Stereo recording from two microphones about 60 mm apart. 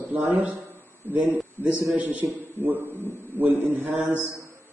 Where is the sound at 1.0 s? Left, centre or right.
Left.